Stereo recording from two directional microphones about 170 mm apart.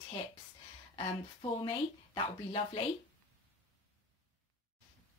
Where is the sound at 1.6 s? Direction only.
30° left (ahead or behind).